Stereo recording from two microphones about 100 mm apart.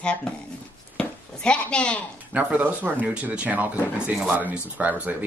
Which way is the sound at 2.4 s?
15° right (ahead or behind).